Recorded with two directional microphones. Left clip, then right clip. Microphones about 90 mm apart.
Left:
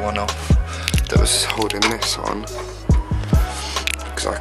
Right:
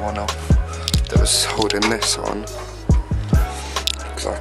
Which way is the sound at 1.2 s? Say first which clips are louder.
Right 1 dB; 10° right (ahead or behind).